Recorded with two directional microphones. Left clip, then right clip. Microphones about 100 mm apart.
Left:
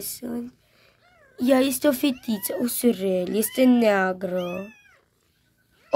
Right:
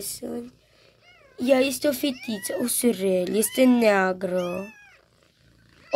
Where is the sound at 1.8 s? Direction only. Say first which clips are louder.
Left 3 dB; 45° left (ahead or behind).